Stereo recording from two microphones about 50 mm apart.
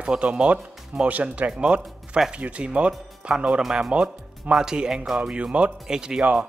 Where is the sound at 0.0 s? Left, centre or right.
Right.